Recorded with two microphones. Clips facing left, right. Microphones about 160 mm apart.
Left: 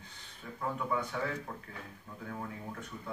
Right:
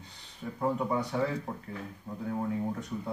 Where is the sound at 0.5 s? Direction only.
35° right (ahead or behind).